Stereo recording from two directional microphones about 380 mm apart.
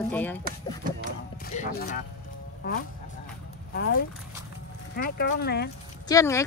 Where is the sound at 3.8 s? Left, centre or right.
Left.